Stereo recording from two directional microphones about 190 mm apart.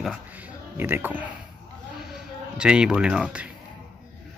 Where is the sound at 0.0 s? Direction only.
5° right (ahead or behind).